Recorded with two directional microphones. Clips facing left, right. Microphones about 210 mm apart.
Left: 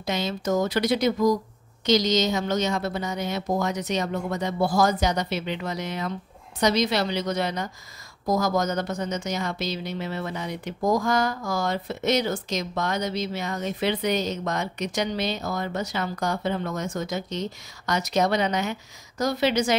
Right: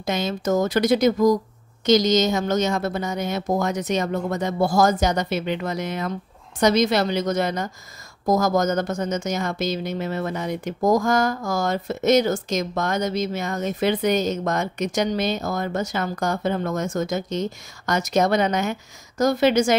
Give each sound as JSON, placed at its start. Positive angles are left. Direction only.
{"t": 0.0, "sound": "a woman's voice", "side_deg": -50}